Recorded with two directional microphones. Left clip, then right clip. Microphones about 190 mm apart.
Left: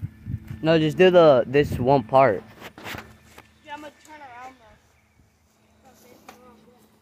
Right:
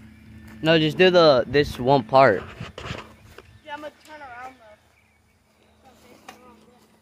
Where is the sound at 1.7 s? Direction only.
5° left (ahead or behind).